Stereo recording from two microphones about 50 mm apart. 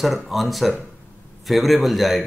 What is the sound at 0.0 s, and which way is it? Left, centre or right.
Speech, centre.